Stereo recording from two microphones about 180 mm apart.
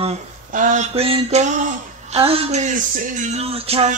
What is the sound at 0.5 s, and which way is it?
Speech, 45° right (ahead or behind).